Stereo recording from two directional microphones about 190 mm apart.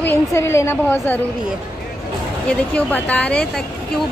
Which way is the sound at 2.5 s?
5° left (ahead or behind).